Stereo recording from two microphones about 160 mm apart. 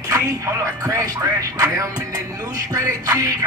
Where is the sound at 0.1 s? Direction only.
20° right (ahead or behind).